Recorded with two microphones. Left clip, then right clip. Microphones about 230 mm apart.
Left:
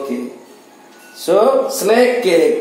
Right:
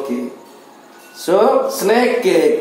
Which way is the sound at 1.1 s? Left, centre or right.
Centre.